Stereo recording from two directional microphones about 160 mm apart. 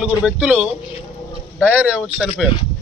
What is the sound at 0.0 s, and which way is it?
Speech, 5° right (ahead or behind).